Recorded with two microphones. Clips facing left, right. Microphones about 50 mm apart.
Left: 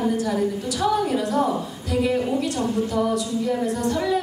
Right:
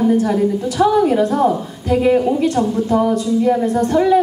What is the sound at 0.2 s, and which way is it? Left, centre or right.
Speech, right.